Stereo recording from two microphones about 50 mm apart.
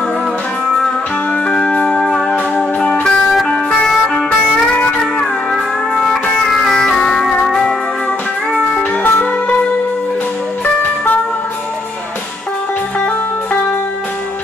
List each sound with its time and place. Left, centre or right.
1.6 s music: left
2.0 s music: centre
5.5 s music: centre
9.0 s music: left